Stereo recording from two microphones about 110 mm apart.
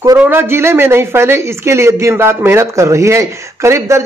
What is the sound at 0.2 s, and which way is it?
Speech, 20° right (ahead or behind).